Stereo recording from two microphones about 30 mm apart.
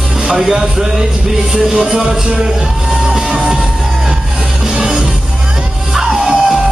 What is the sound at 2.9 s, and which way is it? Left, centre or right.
Music, centre.